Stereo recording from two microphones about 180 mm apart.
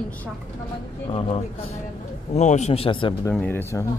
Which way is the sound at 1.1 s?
30° left (ahead or behind).